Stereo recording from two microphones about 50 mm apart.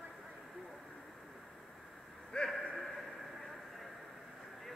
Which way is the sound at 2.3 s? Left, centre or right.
Centre.